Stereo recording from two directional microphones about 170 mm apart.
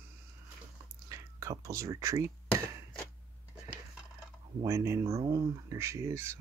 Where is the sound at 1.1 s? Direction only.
20° right (ahead or behind).